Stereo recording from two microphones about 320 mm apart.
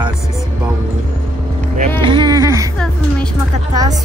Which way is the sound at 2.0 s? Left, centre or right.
Centre.